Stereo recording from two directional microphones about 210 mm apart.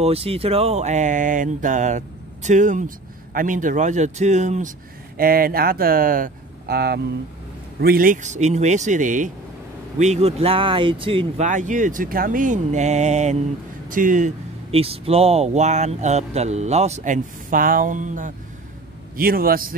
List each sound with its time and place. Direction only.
0.0 s a man's voice: 30° right (ahead or behind); by 19.7 s 45° right (ahead or behind)